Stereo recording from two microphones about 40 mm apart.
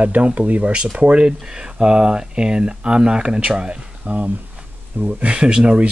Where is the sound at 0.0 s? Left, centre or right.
Right.